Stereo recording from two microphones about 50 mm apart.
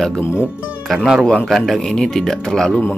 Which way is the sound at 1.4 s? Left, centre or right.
Centre.